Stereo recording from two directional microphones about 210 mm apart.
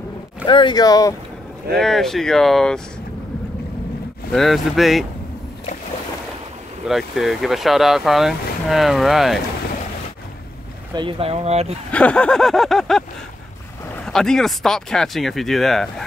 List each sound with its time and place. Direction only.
0.5 s speech: 20° left (ahead or behind)
1.8 s speech: centre (ahead or behind)
4.3 s speech: centre (ahead or behind)
6.9 s speech: centre (ahead or behind)
11.0 s speech: 25° right (ahead or behind)
11.9 s speech: 5° left (ahead or behind)
14.0 s speech: 5° left (ahead or behind)